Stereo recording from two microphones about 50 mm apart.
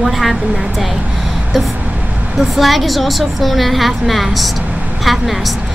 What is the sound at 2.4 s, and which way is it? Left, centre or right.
Speech, centre.